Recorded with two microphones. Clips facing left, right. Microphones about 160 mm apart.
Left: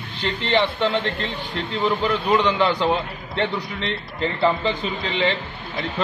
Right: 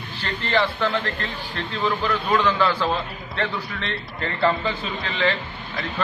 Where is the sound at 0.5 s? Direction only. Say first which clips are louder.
Left 2 dB; 25° left (ahead or behind).